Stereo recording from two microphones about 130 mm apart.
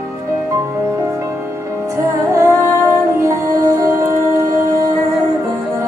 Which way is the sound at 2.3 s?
25° right (ahead or behind).